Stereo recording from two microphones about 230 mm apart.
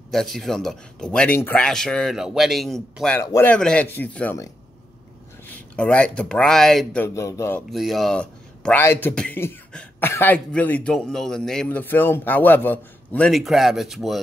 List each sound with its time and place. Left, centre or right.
0.1 s speech: centre
5.8 s speech: centre
7.7 s speech: centre